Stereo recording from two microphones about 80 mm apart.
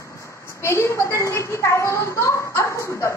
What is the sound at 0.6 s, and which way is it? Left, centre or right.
A woman's voice, left.